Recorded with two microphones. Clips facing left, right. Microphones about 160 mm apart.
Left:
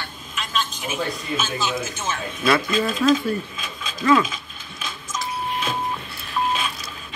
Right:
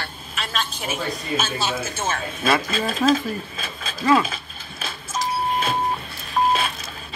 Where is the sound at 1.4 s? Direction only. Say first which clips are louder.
Even; 45° right (ahead or behind).